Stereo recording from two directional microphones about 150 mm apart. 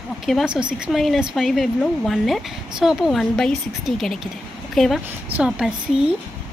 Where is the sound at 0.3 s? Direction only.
5° right (ahead or behind).